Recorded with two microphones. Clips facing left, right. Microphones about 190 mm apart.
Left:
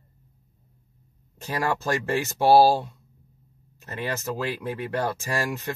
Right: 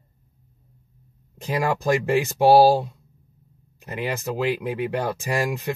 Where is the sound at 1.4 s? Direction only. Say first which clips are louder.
Right 3 dB; 15° right (ahead or behind).